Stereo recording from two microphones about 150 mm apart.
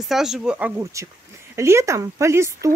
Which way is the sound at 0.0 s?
5° right (ahead or behind).